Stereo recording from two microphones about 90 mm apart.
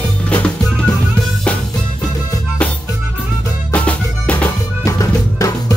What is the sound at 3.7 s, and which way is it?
Music, 15° left (ahead or behind).